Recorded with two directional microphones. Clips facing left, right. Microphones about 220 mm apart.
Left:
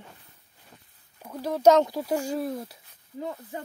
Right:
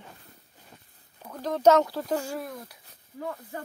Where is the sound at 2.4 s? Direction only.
30° left (ahead or behind).